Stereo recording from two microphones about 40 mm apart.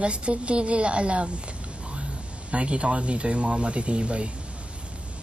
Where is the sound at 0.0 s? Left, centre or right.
Right.